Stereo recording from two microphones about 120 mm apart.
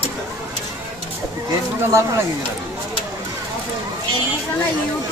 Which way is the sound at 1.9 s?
25° right (ahead or behind).